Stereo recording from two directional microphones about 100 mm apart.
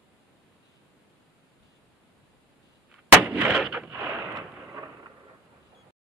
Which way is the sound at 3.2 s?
15° right (ahead or behind).